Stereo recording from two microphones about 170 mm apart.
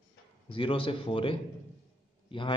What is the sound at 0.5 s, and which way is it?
A man's voice, 30° left (ahead or behind).